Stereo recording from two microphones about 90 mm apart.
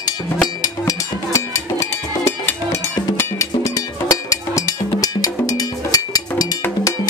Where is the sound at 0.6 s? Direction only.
40° left (ahead or behind).